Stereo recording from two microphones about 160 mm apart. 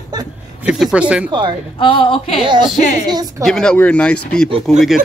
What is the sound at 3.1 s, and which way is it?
Speech, 25° right (ahead or behind).